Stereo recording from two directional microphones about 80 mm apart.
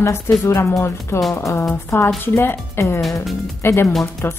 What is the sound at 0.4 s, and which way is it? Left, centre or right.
A woman's voice, left.